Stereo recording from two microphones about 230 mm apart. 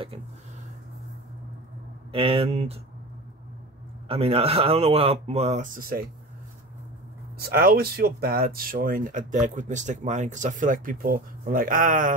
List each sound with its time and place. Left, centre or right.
2.1 s speech: right
4.1 s speech: right
7.5 s speech: right